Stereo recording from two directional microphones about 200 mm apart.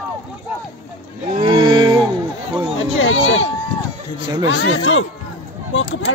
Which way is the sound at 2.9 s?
75° left (ahead or behind).